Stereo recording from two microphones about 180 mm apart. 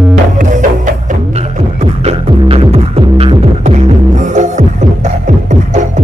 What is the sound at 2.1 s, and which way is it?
Music, 35° right (ahead or behind).